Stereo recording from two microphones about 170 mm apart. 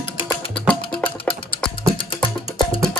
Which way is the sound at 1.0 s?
30° left (ahead or behind).